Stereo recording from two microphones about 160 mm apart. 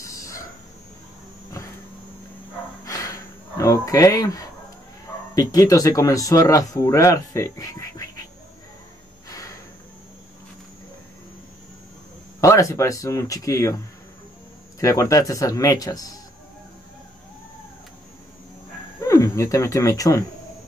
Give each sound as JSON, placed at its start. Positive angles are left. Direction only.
{"t": 0.0, "sound": "a sound", "side_deg": 20}
{"t": 2.8, "sound": "a sound", "side_deg": 20}
{"t": 3.5, "sound": "speech", "side_deg": 20}
{"t": 9.3, "sound": "snort", "side_deg": 20}
{"t": 12.4, "sound": "speech", "side_deg": 20}
{"t": 14.8, "sound": "speech", "side_deg": 20}
{"t": 18.9, "sound": "speech", "side_deg": 15}